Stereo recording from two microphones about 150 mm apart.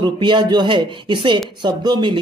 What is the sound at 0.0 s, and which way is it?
A woman's voice, 30° right (ahead or behind).